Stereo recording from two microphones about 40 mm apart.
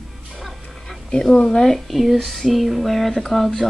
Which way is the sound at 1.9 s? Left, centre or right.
Centre.